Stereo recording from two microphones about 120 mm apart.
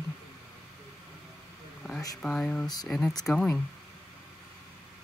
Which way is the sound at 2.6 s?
35° left (ahead or behind).